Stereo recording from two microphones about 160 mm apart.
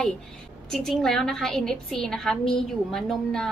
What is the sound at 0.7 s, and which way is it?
A woman's voice, centre (ahead or behind).